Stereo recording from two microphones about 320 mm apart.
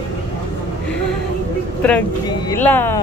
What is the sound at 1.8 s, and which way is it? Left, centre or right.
Speech, centre.